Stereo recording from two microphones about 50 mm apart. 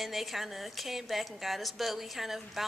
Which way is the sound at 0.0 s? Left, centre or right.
Centre.